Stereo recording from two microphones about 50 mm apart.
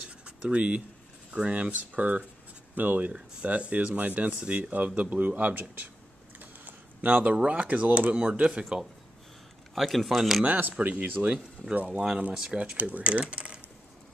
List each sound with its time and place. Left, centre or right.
0.2 s speech: right
6.4 s a sound: right
7.1 s speech: right
9.8 s speech: centre
10.4 s speech: right